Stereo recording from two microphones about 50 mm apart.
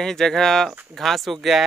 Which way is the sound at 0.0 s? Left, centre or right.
Centre.